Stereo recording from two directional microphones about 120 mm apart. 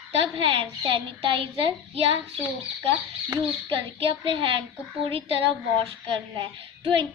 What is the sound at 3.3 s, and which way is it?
A child's voice, 45° right (ahead or behind).